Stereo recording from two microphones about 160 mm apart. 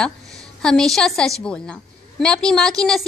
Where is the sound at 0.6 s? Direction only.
5° left (ahead or behind).